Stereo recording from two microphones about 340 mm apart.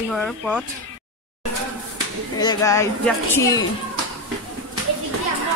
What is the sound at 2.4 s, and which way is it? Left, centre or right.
Speech, centre.